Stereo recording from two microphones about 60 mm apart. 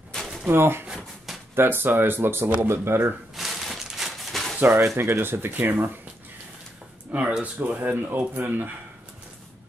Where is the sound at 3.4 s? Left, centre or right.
Centre.